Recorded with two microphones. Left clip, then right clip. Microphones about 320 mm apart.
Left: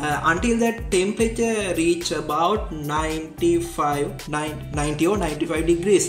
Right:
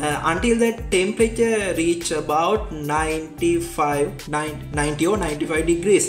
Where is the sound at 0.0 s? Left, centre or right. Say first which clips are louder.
Even; centre.